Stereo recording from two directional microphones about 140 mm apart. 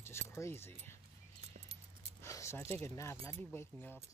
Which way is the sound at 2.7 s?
15° left (ahead or behind).